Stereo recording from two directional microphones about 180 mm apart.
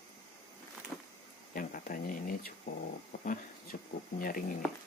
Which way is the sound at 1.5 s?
50° left (ahead or behind).